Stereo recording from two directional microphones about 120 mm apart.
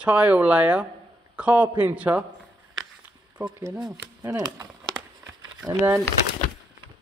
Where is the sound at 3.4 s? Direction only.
15° right (ahead or behind).